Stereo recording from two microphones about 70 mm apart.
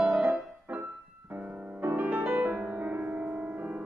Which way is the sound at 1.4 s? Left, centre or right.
Right.